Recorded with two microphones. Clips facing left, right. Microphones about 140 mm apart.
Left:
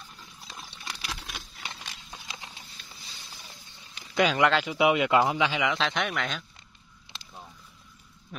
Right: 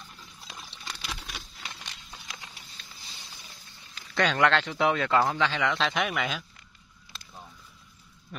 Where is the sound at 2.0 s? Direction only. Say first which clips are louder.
Left 3 dB; 25° left (ahead or behind).